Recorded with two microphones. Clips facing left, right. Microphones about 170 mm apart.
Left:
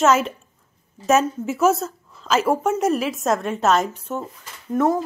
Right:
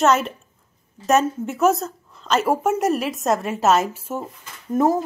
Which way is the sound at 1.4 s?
Centre (ahead or behind).